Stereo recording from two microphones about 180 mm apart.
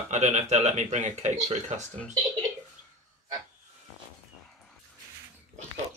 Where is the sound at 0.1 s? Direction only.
40° right (ahead or behind).